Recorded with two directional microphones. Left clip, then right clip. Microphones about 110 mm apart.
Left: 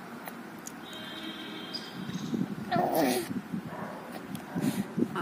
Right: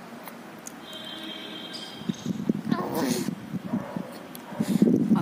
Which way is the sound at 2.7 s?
25° right (ahead or behind).